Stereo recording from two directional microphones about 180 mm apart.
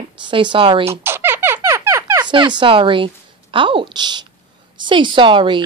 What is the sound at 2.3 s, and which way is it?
Speech, 25° right (ahead or behind).